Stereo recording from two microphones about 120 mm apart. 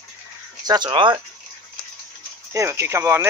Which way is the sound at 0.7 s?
40° right (ahead or behind).